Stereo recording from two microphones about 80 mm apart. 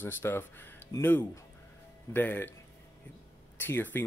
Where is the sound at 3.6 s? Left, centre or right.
Left.